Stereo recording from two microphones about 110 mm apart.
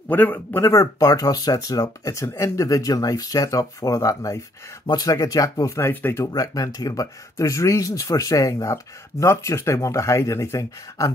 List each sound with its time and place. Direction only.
0.1 s speech: 15° left (ahead or behind)
6.3 s speech: 35° left (ahead or behind)